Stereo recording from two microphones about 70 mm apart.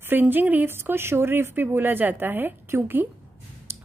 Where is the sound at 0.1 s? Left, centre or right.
Right.